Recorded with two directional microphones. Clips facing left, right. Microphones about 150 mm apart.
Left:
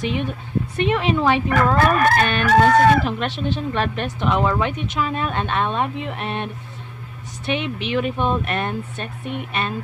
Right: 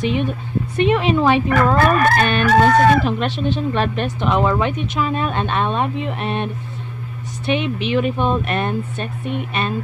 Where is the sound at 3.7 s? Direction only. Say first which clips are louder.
Right 3 dB; 25° right (ahead or behind).